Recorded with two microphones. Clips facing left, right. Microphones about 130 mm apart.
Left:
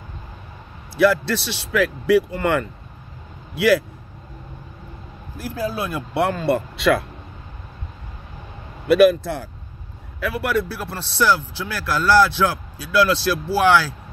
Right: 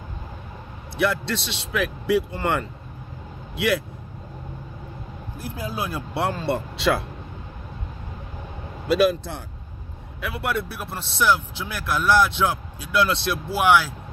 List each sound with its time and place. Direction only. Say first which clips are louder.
0.9 s speech: left 6 dB; 20° right (ahead or behind)
5.5 s speech: left 4 dB; 20° right (ahead or behind)
8.8 s speech: left 6 dB; 25° right (ahead or behind)